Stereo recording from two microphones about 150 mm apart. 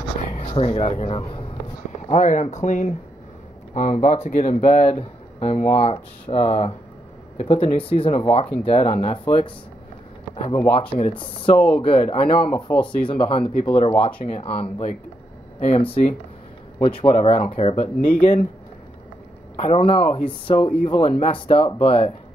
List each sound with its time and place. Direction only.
0.3 s speech: 45° left (ahead or behind)
2.0 s speech: 55° left (ahead or behind)
4.8 s speech: 45° left (ahead or behind)
10.7 s speech: 35° left (ahead or behind)
11.5 s speech: 10° left (ahead or behind)
11.8 s speech: 35° left (ahead or behind)
12.6 s speech: 10° left (ahead or behind)
12.9 s speech: 35° left (ahead or behind)
19.6 s speech: 40° left (ahead or behind)